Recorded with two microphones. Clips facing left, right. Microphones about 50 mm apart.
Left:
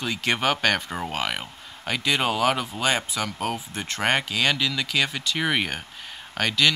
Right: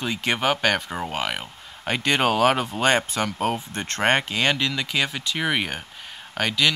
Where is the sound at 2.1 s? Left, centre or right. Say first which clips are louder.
Right 3 dB; right.